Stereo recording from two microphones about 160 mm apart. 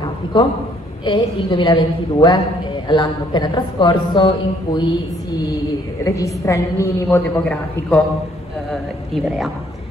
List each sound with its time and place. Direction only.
0.0 s a sound: 30° left (ahead or behind)
1.0 s a woman's voice: 30° left (ahead or behind)
6.0 s a woman's voice: 20° left (ahead or behind)
9.1 s a man's voice: centre (ahead or behind)